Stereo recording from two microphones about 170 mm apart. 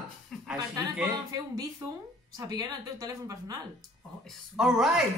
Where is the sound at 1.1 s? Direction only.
20° right (ahead or behind).